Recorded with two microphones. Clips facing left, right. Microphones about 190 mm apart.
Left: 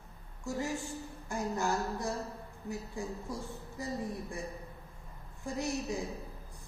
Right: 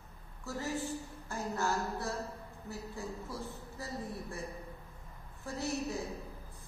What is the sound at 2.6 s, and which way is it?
Speech, 15° left (ahead or behind).